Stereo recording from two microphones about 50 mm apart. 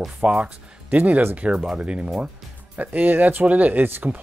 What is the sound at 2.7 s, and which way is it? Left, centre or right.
Speech, right.